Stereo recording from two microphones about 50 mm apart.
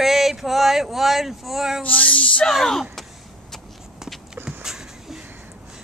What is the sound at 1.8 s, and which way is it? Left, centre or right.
Speech, left.